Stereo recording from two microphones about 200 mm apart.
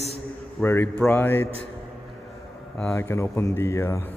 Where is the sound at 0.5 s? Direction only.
10° left (ahead or behind).